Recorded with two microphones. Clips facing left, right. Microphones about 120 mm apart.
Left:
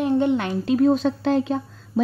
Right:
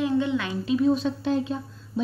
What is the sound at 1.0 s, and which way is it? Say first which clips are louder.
Speech: left 4 dB; 85° left.